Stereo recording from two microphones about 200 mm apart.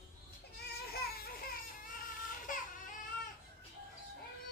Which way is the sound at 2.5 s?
40° left (ahead or behind).